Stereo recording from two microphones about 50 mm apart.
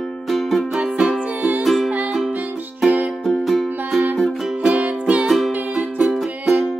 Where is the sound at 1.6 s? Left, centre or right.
Centre.